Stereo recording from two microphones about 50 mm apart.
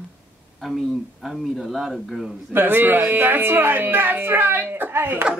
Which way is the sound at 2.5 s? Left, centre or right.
Right.